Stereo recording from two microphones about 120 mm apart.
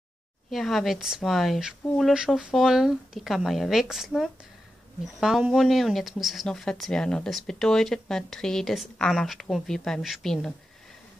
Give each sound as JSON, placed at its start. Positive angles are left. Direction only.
{"t": 0.5, "sound": "speech", "side_deg": 0}